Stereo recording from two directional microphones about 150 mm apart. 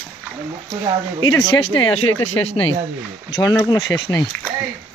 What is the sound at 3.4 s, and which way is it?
Speech, 25° left (ahead or behind).